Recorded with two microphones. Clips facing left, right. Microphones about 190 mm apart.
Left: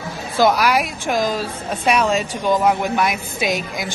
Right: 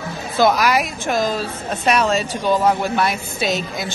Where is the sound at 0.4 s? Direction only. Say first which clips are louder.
Even; 10° left (ahead or behind).